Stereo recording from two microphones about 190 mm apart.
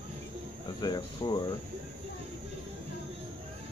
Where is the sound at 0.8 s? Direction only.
20° left (ahead or behind).